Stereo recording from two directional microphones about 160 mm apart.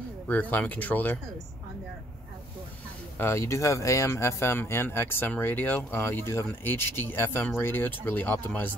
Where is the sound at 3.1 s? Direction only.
15° left (ahead or behind).